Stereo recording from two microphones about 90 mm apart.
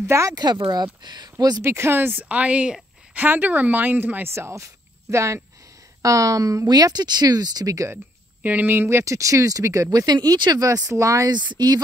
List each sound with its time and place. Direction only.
0.0 s speech: 30° right (ahead or behind)
0.3 s speech: 50° right (ahead or behind)
1.6 s a woman's voice: 30° right (ahead or behind)
8.4 s speech: 20° right (ahead or behind); by 11.2 s 35° right (ahead or behind)
11.2 s speech: 55° right (ahead or behind)